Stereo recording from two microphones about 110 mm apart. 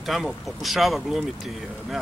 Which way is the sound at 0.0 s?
Centre (ahead or behind).